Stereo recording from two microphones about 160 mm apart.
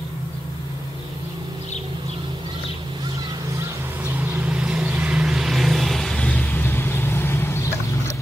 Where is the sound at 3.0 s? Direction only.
25° right (ahead or behind).